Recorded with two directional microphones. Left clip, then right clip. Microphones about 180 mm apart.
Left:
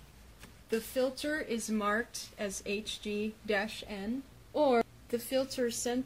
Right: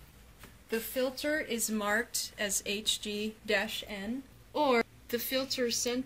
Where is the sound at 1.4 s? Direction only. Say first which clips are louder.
Right 2 dB; 35° left (ahead or behind).